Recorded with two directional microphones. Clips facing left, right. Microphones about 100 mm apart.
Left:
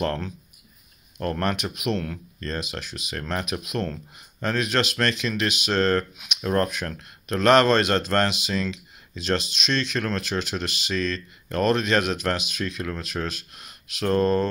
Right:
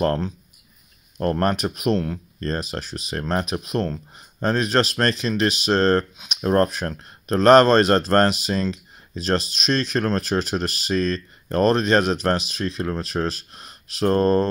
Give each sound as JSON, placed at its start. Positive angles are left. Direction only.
{"t": 0.0, "sound": "speech", "side_deg": -35}